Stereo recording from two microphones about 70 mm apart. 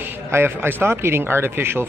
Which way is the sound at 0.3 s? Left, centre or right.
Right.